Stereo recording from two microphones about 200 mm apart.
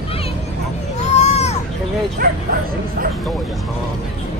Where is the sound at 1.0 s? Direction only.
35° left (ahead or behind).